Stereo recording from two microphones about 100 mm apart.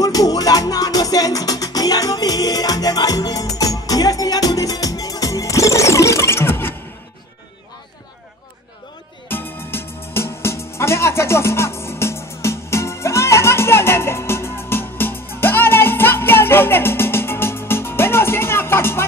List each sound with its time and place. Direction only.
0.0 s music: 40° left (ahead or behind)
9.3 s music: 20° left (ahead or behind)